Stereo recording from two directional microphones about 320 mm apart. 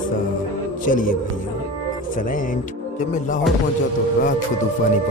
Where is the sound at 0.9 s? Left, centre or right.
Left.